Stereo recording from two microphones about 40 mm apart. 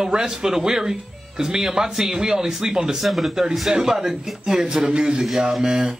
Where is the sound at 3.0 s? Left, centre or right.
Centre.